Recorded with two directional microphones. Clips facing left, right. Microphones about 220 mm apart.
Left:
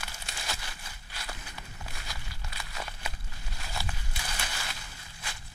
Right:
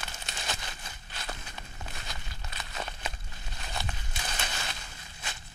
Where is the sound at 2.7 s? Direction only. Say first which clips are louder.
Right 3 dB; 25° right (ahead or behind).